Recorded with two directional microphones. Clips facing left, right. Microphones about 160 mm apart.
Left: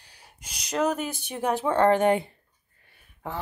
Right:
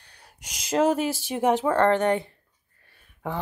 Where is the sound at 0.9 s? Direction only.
90° right.